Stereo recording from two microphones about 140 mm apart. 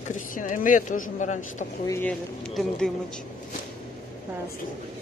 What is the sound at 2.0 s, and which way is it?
Speech, 5° left (ahead or behind).